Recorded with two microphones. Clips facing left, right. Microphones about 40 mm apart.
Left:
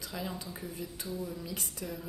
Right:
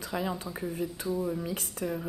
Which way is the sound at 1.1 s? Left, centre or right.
Right.